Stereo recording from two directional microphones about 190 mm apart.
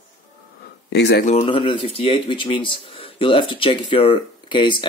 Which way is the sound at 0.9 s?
60° left (ahead or behind).